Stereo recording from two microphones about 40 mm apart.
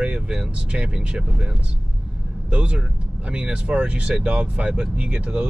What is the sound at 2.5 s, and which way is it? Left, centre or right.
Speech, right.